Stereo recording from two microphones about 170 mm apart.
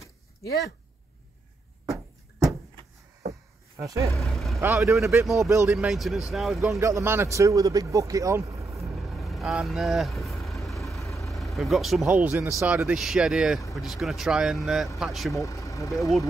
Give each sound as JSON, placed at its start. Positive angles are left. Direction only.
{"t": 3.8, "sound": "speech", "side_deg": -20}
{"t": 4.2, "sound": "vehicle", "side_deg": 0}
{"t": 4.6, "sound": "speech", "side_deg": -15}
{"t": 5.2, "sound": "speech", "side_deg": 0}
{"t": 6.8, "sound": "speech", "side_deg": -15}
{"t": 9.1, "sound": "vehicle", "side_deg": 0}
{"t": 11.1, "sound": "speech", "side_deg": 0}
{"t": 15.3, "sound": "speech", "side_deg": 20}
{"t": 15.9, "sound": "speech", "side_deg": 0}